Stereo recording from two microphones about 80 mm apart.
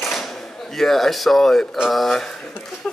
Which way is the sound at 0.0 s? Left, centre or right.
Centre.